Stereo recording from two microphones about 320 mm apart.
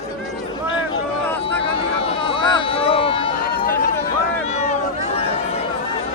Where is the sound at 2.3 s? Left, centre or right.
Centre.